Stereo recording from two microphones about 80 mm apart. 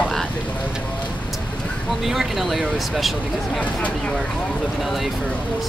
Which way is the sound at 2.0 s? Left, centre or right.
Centre.